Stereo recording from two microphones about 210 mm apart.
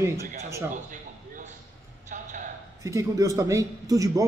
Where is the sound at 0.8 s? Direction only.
35° right (ahead or behind).